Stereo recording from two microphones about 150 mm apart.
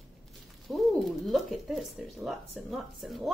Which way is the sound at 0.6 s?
Centre (ahead or behind).